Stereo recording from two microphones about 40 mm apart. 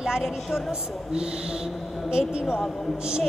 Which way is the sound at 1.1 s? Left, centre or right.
Right.